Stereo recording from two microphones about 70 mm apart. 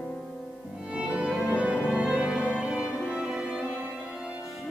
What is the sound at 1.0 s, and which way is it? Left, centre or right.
Music, centre.